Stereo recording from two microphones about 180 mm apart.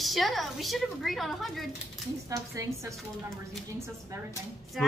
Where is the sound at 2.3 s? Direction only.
15° right (ahead or behind).